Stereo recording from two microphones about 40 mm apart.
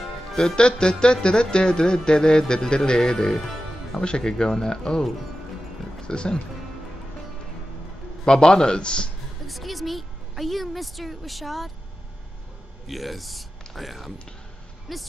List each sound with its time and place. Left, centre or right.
0.4 s music: centre
4.0 s speech: left
6.0 s music: left
8.3 s music: centre
9.5 s a woman's voice: centre
12.8 s speech: centre